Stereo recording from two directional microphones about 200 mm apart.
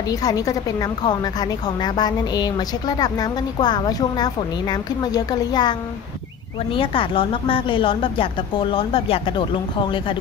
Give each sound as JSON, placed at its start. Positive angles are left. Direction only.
{"t": 0.1, "sound": "a woman's voice", "side_deg": 20}